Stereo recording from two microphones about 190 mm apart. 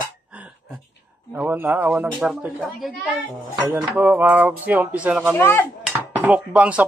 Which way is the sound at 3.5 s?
10° right (ahead or behind).